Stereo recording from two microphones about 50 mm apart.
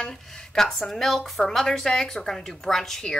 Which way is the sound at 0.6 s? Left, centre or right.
Centre.